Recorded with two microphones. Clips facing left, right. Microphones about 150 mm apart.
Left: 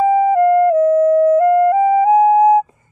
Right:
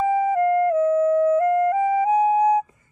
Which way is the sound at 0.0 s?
60° left (ahead or behind).